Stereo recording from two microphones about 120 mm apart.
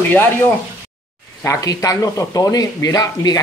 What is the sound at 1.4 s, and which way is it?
Speech, 25° left (ahead or behind).